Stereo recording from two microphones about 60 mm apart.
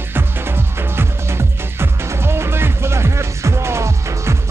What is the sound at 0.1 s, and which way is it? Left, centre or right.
Music, right.